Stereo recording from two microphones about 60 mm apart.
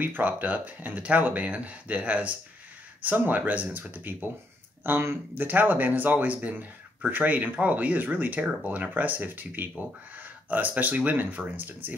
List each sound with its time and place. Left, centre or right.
0.0 s speech: right